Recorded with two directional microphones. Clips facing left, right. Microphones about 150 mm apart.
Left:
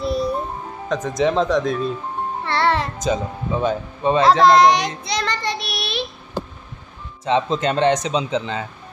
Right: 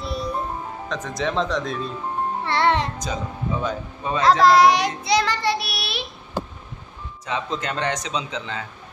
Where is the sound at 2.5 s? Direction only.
20° right (ahead or behind).